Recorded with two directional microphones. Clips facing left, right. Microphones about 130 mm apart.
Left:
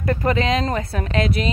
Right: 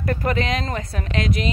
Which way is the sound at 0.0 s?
30° left (ahead or behind).